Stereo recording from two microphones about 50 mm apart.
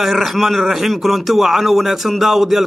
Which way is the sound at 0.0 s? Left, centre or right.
Centre.